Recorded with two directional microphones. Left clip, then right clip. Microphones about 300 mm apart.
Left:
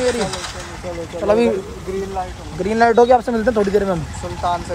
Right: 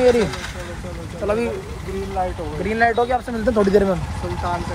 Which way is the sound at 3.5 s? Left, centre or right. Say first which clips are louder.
Right 1 dB; centre.